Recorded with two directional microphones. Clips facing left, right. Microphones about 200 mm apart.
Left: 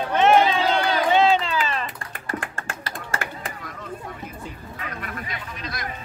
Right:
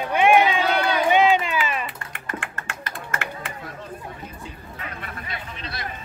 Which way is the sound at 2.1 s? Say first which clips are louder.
Left 2 dB; 35° left (ahead or behind).